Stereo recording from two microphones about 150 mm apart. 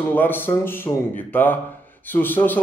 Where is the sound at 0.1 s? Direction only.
15° left (ahead or behind).